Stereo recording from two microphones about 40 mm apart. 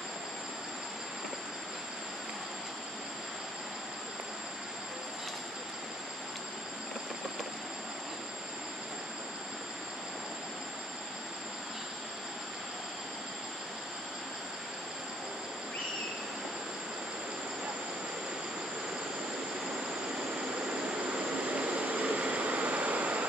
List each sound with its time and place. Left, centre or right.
21.4 s vehicle: right